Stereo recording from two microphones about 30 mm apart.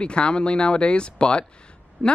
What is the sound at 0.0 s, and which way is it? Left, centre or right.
Speech, left.